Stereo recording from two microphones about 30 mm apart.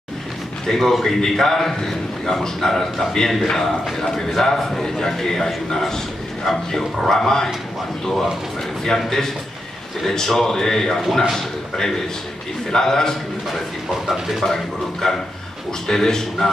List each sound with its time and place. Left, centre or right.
0.7 s a man's voice: centre
3.6 s a man's voice: centre
14.5 s a man's voice: centre